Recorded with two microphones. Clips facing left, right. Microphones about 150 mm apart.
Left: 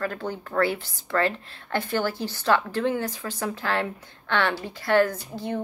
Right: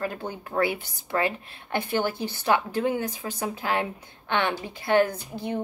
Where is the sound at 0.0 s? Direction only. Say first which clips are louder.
Left 2 dB; 15° right (ahead or behind).